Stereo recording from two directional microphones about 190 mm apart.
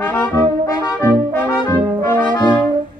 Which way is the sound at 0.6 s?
20° left (ahead or behind).